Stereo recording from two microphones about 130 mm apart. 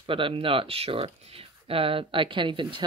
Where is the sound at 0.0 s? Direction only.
45° right (ahead or behind).